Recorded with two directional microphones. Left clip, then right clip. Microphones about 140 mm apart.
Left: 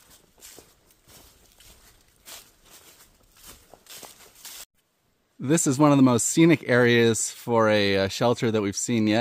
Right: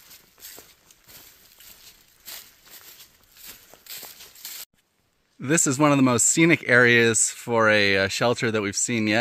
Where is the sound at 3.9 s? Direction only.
5° right (ahead or behind).